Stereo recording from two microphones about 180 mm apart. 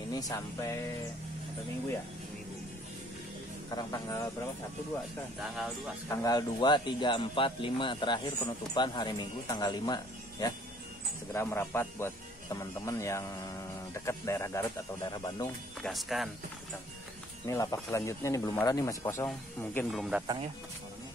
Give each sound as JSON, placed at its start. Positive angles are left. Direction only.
{"t": 0.1, "sound": "speech", "side_deg": 20}
{"t": 3.7, "sound": "speech", "side_deg": 15}
{"t": 6.0, "sound": "a man's voice", "side_deg": 20}
{"t": 11.3, "sound": "a man's voice", "side_deg": 15}
{"t": 15.8, "sound": "speech", "side_deg": 0}
{"t": 17.5, "sound": "a man's voice", "side_deg": 20}